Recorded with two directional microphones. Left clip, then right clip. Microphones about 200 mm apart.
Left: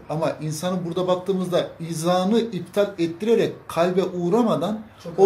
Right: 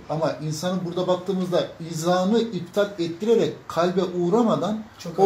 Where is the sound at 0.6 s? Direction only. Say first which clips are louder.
Left 1 dB; 15° left (ahead or behind).